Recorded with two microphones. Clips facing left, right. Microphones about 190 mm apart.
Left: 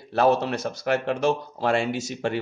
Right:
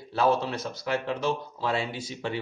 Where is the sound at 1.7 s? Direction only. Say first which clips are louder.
Left 6 dB; 85° left.